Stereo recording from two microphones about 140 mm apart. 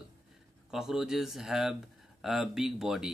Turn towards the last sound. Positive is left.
turn(degrees=-5)  # may be behind; listen again after turning